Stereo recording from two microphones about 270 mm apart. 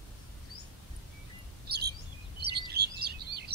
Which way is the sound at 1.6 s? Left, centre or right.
Right.